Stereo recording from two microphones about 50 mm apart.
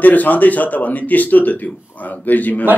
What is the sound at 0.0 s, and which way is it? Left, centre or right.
Speech, left.